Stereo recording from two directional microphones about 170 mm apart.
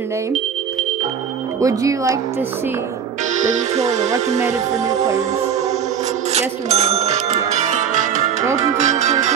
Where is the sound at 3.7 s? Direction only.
20° right (ahead or behind).